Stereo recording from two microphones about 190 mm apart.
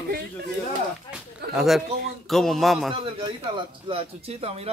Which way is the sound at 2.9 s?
30° right (ahead or behind).